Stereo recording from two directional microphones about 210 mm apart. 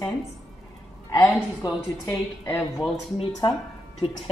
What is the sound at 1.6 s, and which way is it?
A woman's voice, 10° left (ahead or behind).